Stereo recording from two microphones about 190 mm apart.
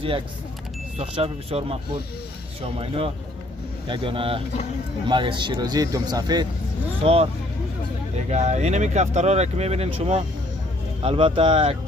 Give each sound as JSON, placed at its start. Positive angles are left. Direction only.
{"t": 0.9, "sound": "speech", "side_deg": -30}
{"t": 8.3, "sound": "speech", "side_deg": -35}